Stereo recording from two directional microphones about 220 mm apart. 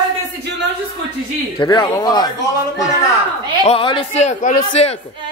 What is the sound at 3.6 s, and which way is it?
Speech, 25° left (ahead or behind).